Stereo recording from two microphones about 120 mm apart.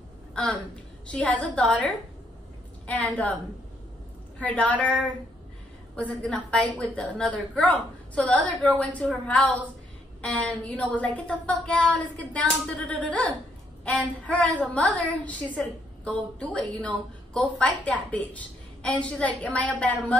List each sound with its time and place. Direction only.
0.3 s a sound: 5° left (ahead or behind)
1.1 s a woman's voice: 10° left (ahead or behind)
4.4 s a woman's voice: 10° left (ahead or behind)